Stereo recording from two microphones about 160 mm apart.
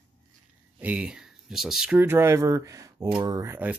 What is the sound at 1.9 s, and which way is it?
Speech, 15° right (ahead or behind).